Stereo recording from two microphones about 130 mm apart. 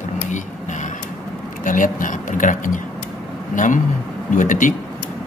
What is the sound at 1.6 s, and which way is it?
Speech, 90° left.